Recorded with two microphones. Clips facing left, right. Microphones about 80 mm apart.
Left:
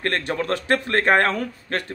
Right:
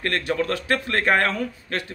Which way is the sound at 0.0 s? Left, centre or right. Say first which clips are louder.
Even; left.